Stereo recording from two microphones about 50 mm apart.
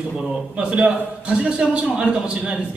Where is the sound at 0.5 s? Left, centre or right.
Right.